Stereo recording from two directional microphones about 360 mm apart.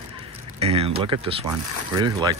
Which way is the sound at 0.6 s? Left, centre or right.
Centre.